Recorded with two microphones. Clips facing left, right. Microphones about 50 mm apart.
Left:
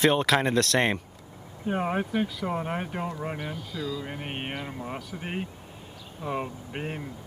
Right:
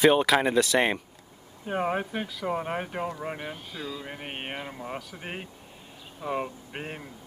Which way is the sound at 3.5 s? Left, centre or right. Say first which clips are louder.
Left 4 dB; right.